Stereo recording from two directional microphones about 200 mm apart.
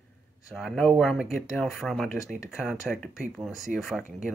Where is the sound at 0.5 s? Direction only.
Centre (ahead or behind).